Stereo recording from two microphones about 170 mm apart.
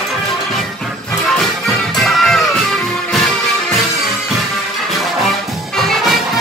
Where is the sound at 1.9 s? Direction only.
Centre (ahead or behind).